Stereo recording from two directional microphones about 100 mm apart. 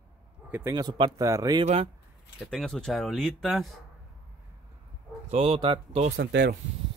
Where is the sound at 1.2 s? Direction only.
35° right (ahead or behind).